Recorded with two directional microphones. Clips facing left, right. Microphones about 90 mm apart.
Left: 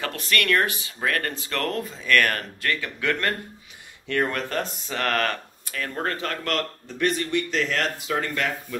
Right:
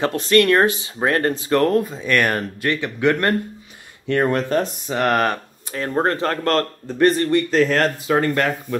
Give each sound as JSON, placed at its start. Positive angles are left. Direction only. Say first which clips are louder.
{"t": 0.0, "sound": "speech", "louder": "right 10 dB", "side_deg": -25}
{"t": 5.9, "sound": "speech", "louder": "right 9 dB", "side_deg": -35}